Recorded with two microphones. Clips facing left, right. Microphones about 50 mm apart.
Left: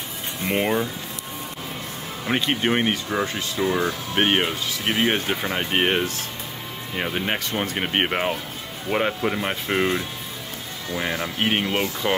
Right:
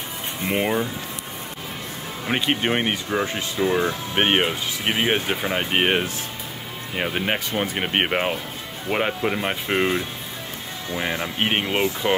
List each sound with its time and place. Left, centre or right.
0.4 s speech: centre
2.2 s speech: centre
3.3 s speech: right
10.9 s speech: centre